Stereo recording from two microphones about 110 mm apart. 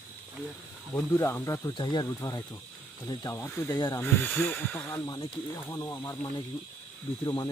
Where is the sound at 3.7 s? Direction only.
40° left (ahead or behind).